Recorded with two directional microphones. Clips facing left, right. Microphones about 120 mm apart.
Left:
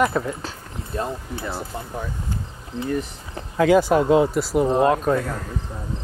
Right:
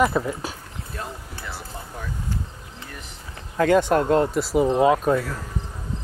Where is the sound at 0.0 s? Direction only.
5° right (ahead or behind).